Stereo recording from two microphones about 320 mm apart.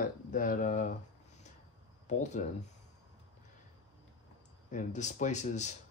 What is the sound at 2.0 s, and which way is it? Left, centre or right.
Speech, left.